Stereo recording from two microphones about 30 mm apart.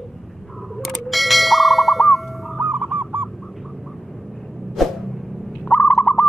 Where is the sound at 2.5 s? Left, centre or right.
Right.